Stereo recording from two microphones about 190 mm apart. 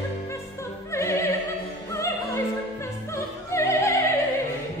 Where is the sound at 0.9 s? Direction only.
15° left (ahead or behind).